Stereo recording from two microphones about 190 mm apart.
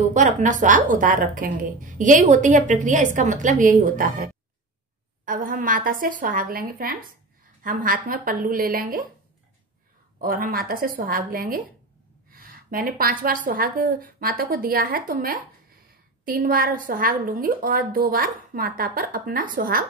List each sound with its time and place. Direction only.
0.1 s a woman's voice: 40° right (ahead or behind)
10.2 s a woman's voice: 50° right (ahead or behind)